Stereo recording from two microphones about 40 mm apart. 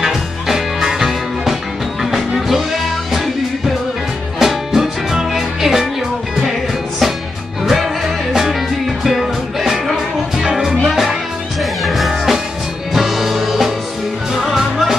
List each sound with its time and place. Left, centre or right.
0.0 s music: centre
4.4 s music: centre
8.3 s music: centre